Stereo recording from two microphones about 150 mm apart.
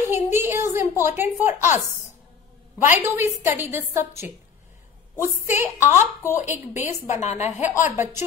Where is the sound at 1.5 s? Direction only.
55° left (ahead or behind).